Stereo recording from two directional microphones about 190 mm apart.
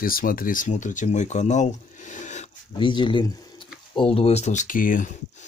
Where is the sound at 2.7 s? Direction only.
25° left (ahead or behind).